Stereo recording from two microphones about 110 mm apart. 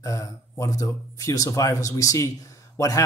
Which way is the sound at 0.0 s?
30° left (ahead or behind).